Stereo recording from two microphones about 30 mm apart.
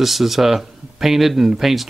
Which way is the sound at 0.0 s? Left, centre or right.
Centre.